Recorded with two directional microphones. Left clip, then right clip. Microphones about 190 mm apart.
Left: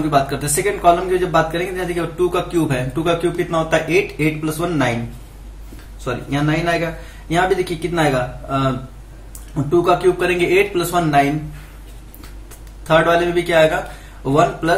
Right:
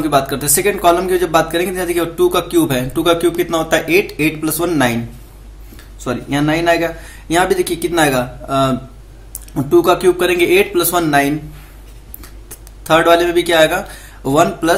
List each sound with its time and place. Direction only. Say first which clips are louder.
0.1 s speech: right 2 dB; 40° right (ahead or behind)
6.0 s speech: right 4 dB; 45° right (ahead or behind)
12.8 s speech: right 3 dB; 45° right (ahead or behind)